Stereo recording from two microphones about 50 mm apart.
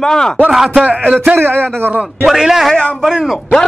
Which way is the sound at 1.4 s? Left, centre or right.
Right.